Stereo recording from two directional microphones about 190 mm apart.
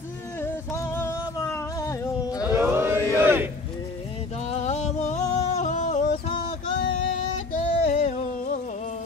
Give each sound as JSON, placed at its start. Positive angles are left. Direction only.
{"t": 0.4, "sound": "music", "side_deg": 15}
{"t": 2.4, "sound": "chant", "side_deg": -10}
{"t": 3.2, "sound": "a sound", "side_deg": -10}
{"t": 4.5, "sound": "music", "side_deg": 35}